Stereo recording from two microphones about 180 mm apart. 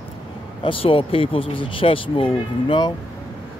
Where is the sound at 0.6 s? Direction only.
30° left (ahead or behind).